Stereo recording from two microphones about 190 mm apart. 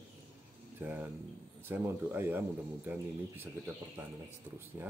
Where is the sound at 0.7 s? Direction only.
10° right (ahead or behind).